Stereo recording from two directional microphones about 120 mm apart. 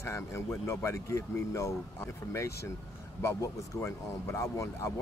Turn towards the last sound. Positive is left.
turn(degrees=25)  # may be behind; listen again after turning